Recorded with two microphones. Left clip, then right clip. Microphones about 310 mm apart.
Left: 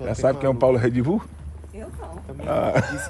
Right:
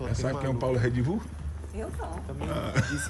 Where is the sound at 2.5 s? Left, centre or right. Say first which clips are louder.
Left 11 dB; centre.